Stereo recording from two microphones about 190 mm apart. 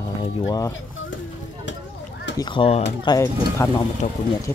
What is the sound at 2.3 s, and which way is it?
Speech, 25° left (ahead or behind).